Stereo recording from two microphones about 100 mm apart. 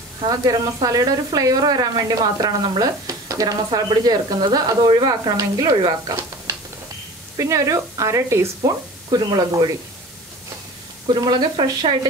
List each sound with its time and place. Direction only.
0.3 s speech: 40° right (ahead or behind)
7.3 s speech: 30° right (ahead or behind)
9.3 s a woman's voice: 45° right (ahead or behind)
11.1 s a woman's voice: 45° right (ahead or behind)